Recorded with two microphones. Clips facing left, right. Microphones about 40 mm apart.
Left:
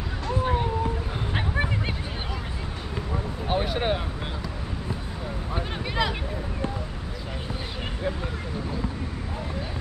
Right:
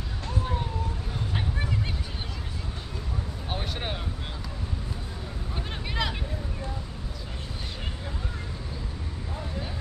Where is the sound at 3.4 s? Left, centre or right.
Centre.